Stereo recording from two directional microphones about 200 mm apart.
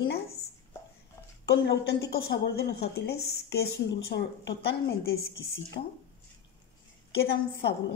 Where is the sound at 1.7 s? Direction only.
55° left (ahead or behind).